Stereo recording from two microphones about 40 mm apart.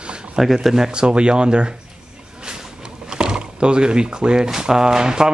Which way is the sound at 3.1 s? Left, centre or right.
Centre.